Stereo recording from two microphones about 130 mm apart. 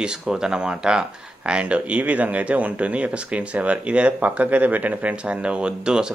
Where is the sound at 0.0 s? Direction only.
5° right (ahead or behind).